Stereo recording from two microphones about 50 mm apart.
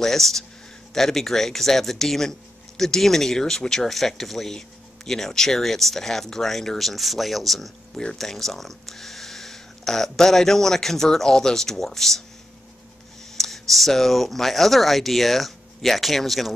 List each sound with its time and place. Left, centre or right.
0.0 s speech: centre
13.4 s speech: centre